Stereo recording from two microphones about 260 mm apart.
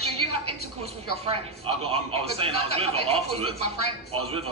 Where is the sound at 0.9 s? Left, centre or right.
Right.